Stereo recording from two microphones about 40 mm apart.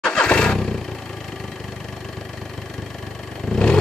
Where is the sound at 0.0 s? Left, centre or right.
Centre.